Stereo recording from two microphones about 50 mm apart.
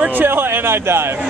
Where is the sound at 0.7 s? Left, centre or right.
Right.